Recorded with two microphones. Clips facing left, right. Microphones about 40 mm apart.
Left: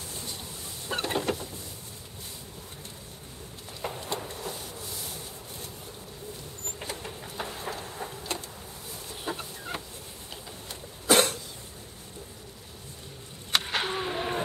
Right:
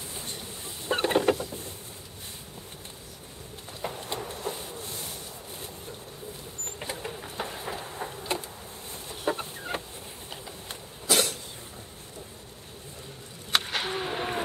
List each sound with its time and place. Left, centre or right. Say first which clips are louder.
0.8 s mechanisms: right 5 dB; centre
4.0 s printer: even; centre
4.7 s a sound: right 1 dB; right
6.8 s vehicle: right 3 dB; centre
7.7 s a sound: right 1 dB; centre
9.1 s chicken: right 6 dB; centre
9.7 s fowl: right 3 dB; right
11.1 s cough: left 4 dB; left
13.5 s a sound: even; centre
14.1 s vehicle: even; centre